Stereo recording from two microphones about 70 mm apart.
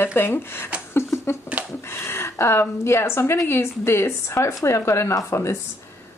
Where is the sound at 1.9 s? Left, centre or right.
Left.